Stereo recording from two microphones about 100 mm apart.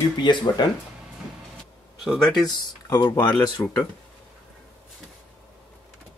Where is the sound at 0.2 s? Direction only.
50° left (ahead or behind).